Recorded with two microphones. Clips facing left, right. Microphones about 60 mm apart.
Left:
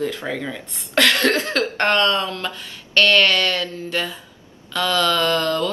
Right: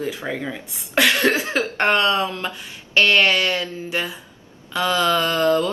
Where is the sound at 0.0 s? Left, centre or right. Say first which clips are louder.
Left 1 dB; centre.